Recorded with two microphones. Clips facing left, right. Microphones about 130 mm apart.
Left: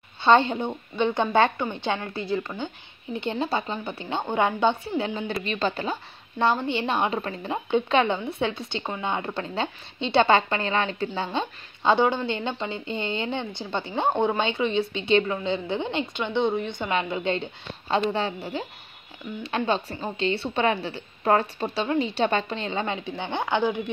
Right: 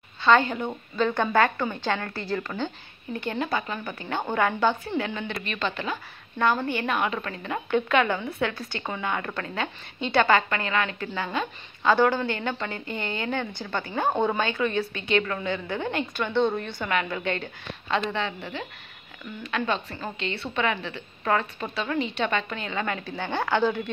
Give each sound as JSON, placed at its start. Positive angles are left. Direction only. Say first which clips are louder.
{"t": 0.2, "sound": "a woman's voice", "louder": "left 2 dB", "side_deg": 25}
{"t": 6.3, "sound": "a woman's voice", "louder": "left 1 dB", "side_deg": 25}